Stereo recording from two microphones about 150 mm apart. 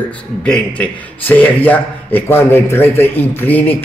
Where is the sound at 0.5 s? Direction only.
10° left (ahead or behind).